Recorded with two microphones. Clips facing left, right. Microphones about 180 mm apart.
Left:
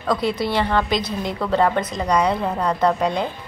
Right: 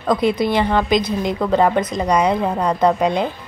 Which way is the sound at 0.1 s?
20° right (ahead or behind).